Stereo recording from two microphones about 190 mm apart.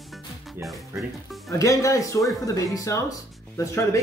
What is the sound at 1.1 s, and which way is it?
Speech, centre (ahead or behind).